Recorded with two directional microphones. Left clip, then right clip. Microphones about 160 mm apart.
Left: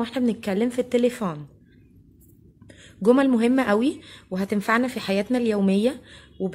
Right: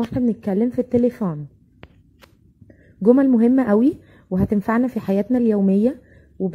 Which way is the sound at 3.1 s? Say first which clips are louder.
Right 3 dB; 30° right (ahead or behind).